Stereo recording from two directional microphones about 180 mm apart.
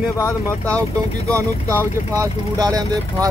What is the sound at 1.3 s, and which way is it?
Speech, 15° right (ahead or behind).